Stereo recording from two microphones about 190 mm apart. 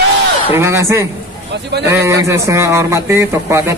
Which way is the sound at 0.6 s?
15° right (ahead or behind).